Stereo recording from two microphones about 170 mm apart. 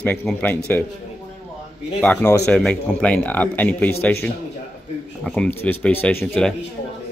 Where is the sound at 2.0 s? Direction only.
10° left (ahead or behind).